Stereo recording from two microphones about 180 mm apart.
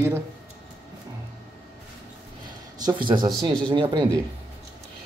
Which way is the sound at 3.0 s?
25° right (ahead or behind).